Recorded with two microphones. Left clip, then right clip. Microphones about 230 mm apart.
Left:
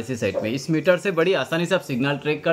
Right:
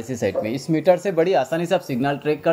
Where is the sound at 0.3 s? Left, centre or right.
Left.